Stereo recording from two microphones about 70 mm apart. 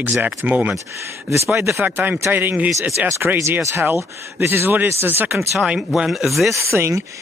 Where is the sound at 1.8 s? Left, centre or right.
Right.